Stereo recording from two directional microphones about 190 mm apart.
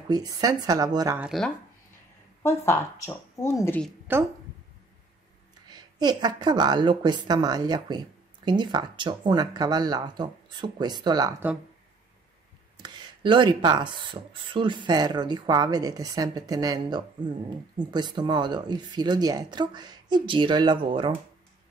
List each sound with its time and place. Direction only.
0.1 s speech: 20° right (ahead or behind)
2.4 s speech: 15° left (ahead or behind)
5.7 s speech: 20° right (ahead or behind)
12.7 s speech: 25° right (ahead or behind)